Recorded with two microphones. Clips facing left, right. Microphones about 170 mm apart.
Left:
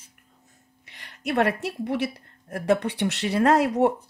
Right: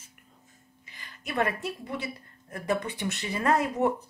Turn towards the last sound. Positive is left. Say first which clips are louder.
# left 6 dB
turn(degrees=75)  # may be behind; listen again after turning